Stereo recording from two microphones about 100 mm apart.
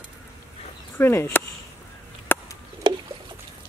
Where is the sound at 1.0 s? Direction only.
25° left (ahead or behind).